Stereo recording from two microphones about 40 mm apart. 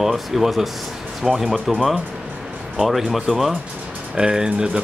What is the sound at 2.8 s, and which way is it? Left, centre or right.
Speech, centre.